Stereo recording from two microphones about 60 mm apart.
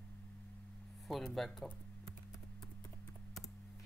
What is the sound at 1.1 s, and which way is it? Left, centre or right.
Speech, centre.